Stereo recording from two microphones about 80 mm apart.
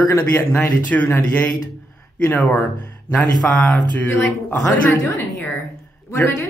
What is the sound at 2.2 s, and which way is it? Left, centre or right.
Speech, left.